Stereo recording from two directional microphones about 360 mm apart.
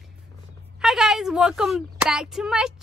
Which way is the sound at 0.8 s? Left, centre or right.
Centre.